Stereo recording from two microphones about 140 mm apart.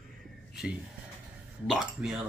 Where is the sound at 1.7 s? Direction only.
5° right (ahead or behind).